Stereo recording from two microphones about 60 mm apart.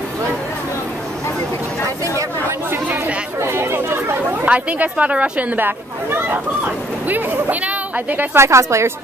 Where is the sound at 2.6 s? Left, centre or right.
Right.